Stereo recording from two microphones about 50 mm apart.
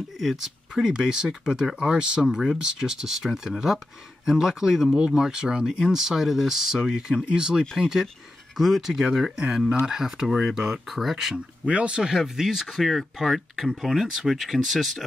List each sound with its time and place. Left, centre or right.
0.2 s speech: centre
0.8 s speech: centre
11.3 s speech: right
12.0 s speech: centre